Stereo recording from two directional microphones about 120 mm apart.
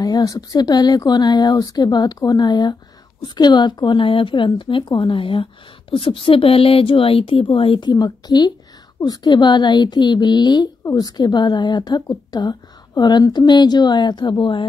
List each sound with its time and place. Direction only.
0.0 s a woman's voice: 30° left (ahead or behind); by 7.9 s 50° left (ahead or behind)
7.9 s a woman's voice: 35° left (ahead or behind)